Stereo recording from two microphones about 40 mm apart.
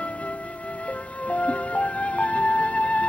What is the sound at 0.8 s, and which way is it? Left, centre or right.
Music, left.